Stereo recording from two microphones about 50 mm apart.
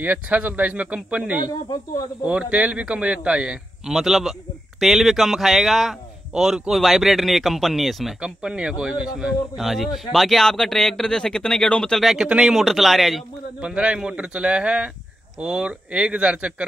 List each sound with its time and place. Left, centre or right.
0.0 s a man's voice: right
3.9 s speech: centre
8.2 s speech: centre
9.6 s speech: centre
12.2 s speech: centre
12.5 s speech: centre
13.6 s a man's voice: right